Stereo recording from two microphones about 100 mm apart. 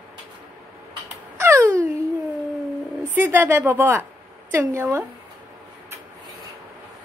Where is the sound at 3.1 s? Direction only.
20° right (ahead or behind).